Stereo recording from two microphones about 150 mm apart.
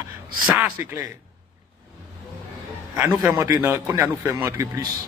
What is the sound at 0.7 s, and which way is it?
Speech, 20° right (ahead or behind).